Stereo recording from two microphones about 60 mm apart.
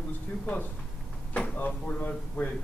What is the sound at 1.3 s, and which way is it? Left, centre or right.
Drawer open or close, left.